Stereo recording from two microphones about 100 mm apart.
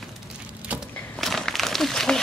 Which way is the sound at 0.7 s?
15° right (ahead or behind).